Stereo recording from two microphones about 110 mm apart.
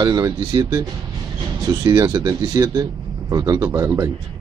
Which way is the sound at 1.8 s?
35° right (ahead or behind).